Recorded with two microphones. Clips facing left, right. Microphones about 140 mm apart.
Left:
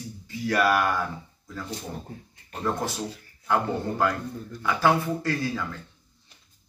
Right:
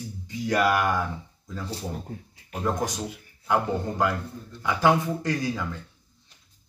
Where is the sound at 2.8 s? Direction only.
15° right (ahead or behind).